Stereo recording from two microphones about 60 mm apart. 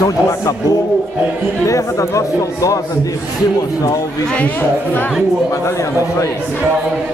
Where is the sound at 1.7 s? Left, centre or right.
Left.